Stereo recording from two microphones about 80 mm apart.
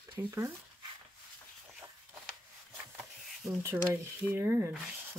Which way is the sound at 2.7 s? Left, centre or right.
Centre.